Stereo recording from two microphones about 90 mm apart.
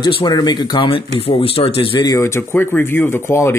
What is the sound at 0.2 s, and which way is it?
Speech, 50° left (ahead or behind).